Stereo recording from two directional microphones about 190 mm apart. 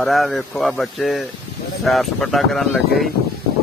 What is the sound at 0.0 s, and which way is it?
Speech, centre (ahead or behind).